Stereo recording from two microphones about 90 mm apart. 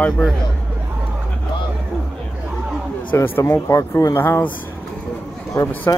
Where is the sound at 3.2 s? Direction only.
30° left (ahead or behind).